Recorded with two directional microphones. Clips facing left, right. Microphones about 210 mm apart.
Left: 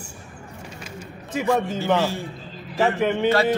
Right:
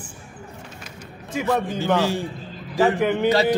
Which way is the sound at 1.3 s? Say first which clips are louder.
Left 1 dB; centre (ahead or behind).